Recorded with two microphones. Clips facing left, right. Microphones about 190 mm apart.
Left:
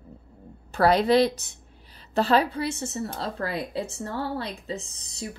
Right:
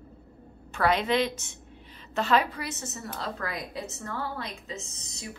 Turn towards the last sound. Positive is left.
turn(degrees=35)  # may be behind; listen again after turning